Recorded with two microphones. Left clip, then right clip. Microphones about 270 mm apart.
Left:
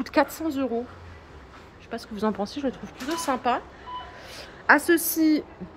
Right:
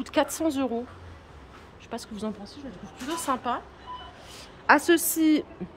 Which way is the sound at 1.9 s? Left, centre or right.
Centre.